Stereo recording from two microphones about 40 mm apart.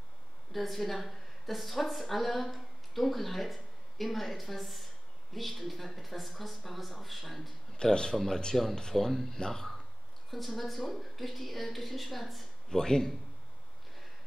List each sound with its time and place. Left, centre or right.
0.5 s speech: centre
7.7 s speech: centre
12.6 s speech: centre